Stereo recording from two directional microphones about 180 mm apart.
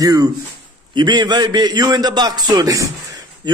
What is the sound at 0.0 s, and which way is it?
A man's voice, 20° right (ahead or behind).